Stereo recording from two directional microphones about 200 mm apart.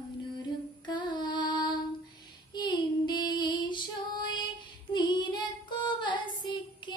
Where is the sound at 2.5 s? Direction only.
20° left (ahead or behind).